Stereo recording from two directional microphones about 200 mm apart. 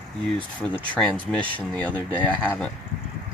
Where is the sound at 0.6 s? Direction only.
5° left (ahead or behind).